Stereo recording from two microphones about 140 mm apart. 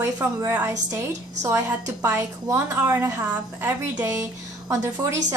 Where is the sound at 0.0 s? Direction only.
20° right (ahead or behind).